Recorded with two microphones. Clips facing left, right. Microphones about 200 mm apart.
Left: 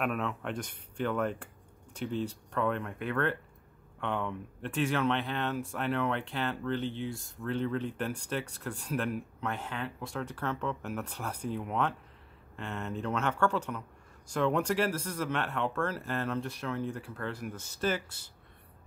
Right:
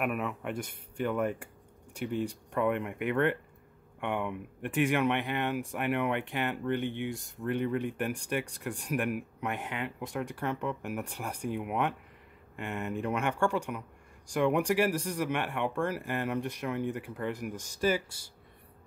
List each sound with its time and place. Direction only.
0.0 s speech: 10° right (ahead or behind)